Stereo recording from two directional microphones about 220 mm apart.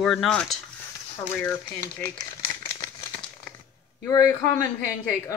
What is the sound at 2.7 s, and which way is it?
Crumpling, 15° left (ahead or behind).